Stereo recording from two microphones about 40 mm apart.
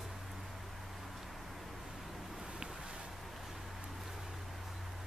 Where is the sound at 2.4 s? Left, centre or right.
Centre.